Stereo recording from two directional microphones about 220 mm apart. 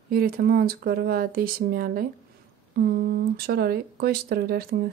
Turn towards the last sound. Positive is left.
turn(degrees=-45)  # may be behind; listen again after turning